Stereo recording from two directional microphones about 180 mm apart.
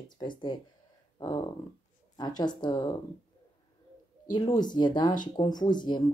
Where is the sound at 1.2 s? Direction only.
20° left (ahead or behind).